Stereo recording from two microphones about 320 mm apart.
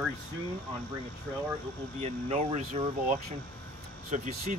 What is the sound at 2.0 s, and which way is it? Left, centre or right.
Speech, right.